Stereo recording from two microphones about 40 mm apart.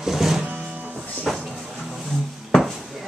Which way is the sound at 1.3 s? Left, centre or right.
Centre.